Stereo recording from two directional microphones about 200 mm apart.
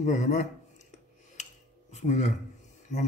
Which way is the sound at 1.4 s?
35° left (ahead or behind).